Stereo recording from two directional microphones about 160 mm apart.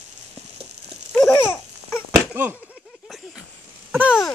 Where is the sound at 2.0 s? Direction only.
10° right (ahead or behind).